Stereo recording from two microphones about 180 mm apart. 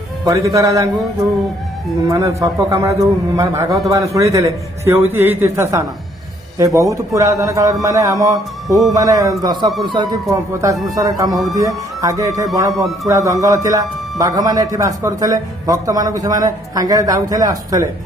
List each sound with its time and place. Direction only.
0.2 s a man's voice: 15° right (ahead or behind)
2.0 s a man's voice: 15° right (ahead or behind)
11.0 s a man's voice: 20° right (ahead or behind)